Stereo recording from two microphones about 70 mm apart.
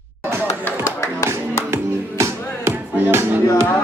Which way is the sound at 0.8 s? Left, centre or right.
Left.